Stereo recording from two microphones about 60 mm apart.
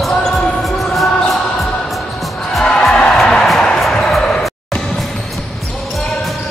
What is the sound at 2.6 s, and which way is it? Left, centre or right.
Music, centre.